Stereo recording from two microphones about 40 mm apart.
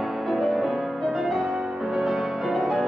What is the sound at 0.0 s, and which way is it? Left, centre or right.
Music, centre.